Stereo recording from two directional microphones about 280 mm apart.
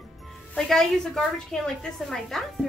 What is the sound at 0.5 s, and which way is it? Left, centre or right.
A woman's voice, centre.